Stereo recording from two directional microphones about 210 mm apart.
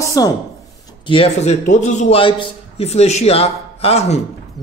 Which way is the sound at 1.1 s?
30° left (ahead or behind).